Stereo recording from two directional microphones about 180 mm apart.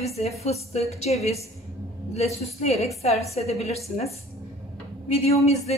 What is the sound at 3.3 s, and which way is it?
Speech, 35° left (ahead or behind).